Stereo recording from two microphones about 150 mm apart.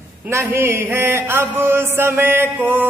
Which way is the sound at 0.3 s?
15° right (ahead or behind).